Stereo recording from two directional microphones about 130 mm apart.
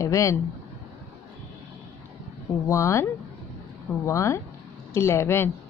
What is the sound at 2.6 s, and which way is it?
Speech, 20° left (ahead or behind).